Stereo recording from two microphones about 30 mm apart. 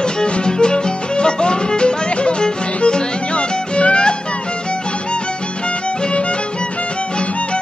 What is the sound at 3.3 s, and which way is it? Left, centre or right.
Music, left.